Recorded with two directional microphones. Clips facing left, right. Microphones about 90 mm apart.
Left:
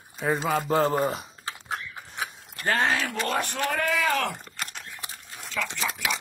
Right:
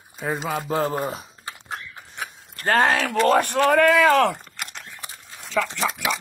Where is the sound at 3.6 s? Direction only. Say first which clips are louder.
Right 10 dB; 65° right (ahead or behind).